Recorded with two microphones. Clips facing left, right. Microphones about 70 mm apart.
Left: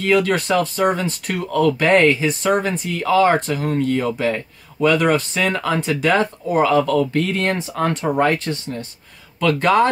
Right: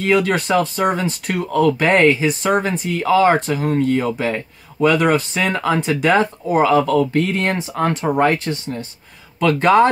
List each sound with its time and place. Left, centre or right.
0.0 s speech: right
9.4 s speech: right